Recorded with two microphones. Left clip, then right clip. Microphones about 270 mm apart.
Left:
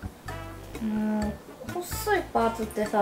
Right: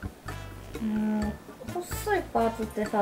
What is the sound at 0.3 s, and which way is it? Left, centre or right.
Speech, centre.